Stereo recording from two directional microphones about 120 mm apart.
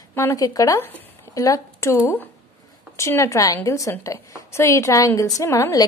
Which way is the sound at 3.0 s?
20° left (ahead or behind).